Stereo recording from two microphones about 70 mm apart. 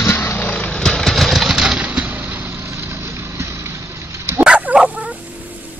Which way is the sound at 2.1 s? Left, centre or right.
Right.